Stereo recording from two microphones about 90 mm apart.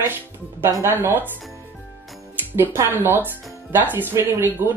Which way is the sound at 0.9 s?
25° right (ahead or behind).